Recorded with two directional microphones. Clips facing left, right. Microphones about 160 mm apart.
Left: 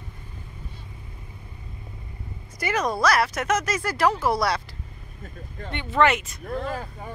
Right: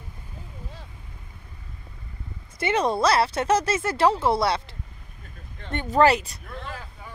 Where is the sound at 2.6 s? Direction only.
25° right (ahead or behind).